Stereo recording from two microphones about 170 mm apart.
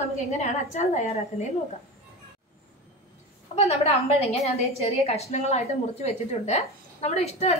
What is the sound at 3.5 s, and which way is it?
A woman's voice, 40° left (ahead or behind).